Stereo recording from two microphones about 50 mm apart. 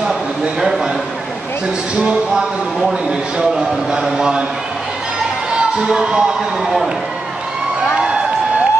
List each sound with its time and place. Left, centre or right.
0.1 s a sound: centre
2.0 s a man's voice: centre
5.8 s speech: centre